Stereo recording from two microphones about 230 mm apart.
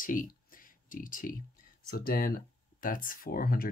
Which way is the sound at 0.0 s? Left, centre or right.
Left.